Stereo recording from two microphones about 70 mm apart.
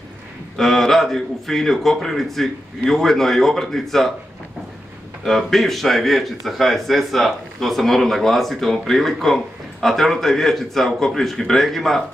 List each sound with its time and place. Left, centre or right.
0.6 s speech: centre
5.2 s speech: centre